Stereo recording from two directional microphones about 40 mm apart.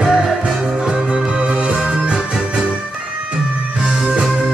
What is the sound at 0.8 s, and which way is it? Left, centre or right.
Music, right.